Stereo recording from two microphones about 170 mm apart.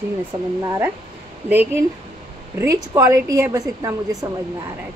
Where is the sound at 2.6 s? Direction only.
20° right (ahead or behind).